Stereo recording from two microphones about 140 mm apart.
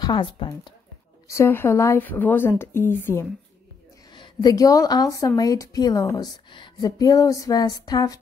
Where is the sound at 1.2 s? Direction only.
20° left (ahead or behind).